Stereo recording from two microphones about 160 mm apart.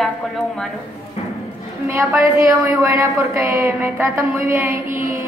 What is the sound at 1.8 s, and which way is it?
A woman's voice, 20° right (ahead or behind).